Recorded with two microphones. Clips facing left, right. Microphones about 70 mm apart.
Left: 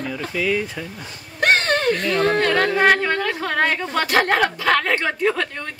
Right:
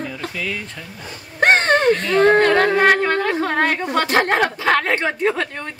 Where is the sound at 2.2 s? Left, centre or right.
Right.